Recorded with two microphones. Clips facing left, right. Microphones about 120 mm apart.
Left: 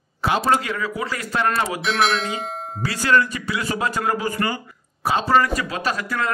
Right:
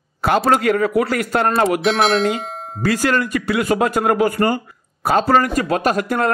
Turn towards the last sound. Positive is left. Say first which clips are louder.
# right 6 dB
turn(degrees=-50)  # may be behind; listen again after turning